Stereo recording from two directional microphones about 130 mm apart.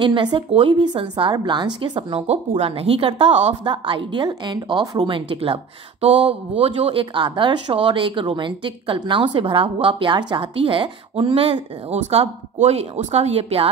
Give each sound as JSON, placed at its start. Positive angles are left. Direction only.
{"t": 0.0, "sound": "a woman's voice", "side_deg": -40}
{"t": 3.6, "sound": "a woman's voice", "side_deg": -40}
{"t": 12.0, "sound": "speech", "side_deg": -55}